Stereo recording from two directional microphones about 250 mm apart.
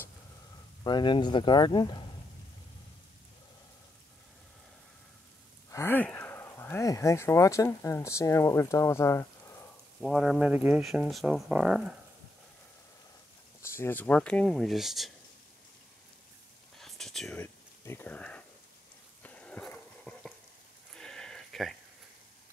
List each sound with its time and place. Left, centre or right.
0.8 s speech: centre
5.7 s speech: centre
9.9 s speech: centre
13.6 s speech: centre
16.7 s whispering: centre
19.2 s dog: centre
20.9 s a sound: centre